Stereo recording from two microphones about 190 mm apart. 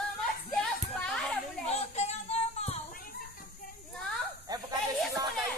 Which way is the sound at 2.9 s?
50° left (ahead or behind).